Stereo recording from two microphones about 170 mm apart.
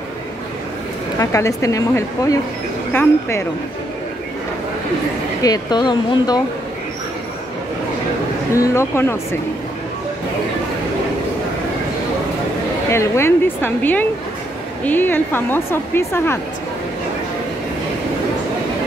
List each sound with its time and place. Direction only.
1.2 s speech: 20° left (ahead or behind)
5.4 s speech: 25° left (ahead or behind)
8.5 s speech: 15° left (ahead or behind)
12.9 s speech: 15° left (ahead or behind)